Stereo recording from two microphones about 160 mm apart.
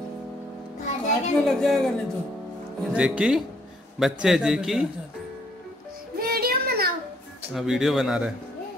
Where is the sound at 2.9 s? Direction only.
5° right (ahead or behind).